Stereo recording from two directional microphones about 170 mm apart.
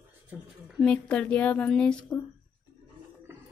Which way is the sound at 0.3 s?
10° right (ahead or behind).